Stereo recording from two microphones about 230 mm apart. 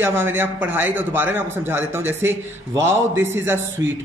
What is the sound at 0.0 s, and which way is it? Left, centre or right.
A man's voice, centre.